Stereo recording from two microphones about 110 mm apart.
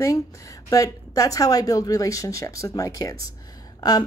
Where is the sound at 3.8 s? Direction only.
35° left (ahead or behind).